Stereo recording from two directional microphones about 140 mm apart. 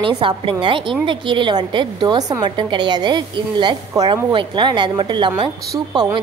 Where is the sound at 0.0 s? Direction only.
35° right (ahead or behind).